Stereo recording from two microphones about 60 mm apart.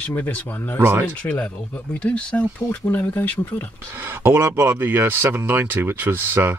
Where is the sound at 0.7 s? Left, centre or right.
Right.